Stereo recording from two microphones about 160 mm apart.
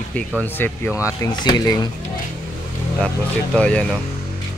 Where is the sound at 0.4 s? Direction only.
10° left (ahead or behind).